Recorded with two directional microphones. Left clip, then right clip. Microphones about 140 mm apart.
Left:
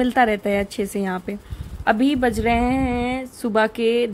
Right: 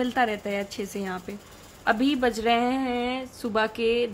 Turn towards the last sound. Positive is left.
turn(degrees=30)  # may be behind; listen again after turning